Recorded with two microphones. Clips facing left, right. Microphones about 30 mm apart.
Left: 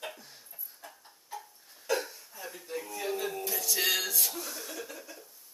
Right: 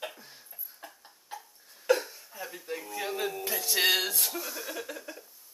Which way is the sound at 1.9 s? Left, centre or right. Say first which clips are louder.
Right 5 dB; right.